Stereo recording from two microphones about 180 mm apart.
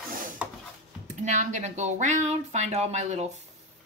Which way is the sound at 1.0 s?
45° right (ahead or behind).